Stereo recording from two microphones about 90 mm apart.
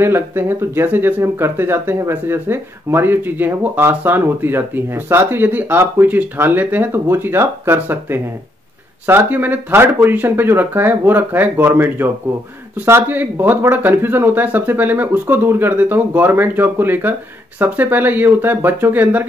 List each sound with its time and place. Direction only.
0.0 s speech: 25° right (ahead or behind)